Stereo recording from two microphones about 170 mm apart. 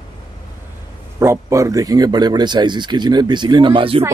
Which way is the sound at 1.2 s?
15° right (ahead or behind).